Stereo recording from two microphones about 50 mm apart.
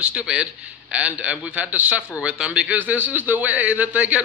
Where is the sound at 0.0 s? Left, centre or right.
Right.